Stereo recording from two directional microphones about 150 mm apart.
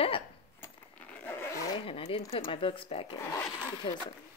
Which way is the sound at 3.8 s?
35° left (ahead or behind).